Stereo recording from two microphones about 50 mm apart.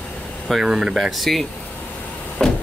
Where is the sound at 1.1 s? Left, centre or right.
Centre.